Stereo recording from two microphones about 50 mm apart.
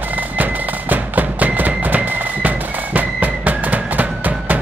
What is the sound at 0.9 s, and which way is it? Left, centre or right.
Music, right.